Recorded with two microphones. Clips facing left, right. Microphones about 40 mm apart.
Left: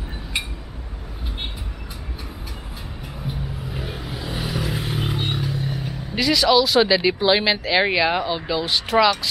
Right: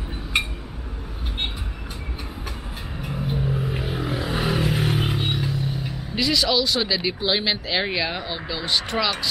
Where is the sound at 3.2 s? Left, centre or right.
Centre.